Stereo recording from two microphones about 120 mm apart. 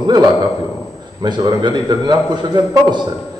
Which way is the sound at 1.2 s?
35° right (ahead or behind).